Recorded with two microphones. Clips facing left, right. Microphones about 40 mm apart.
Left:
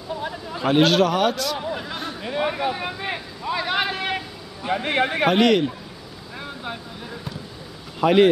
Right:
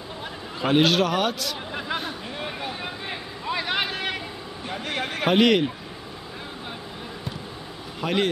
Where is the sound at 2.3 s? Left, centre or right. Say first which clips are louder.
Left 13 dB; left.